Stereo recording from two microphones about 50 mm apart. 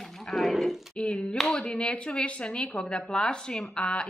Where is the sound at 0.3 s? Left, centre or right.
Centre.